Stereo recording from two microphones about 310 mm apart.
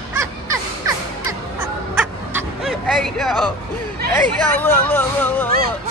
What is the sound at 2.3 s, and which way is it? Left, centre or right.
Bow-wow, centre.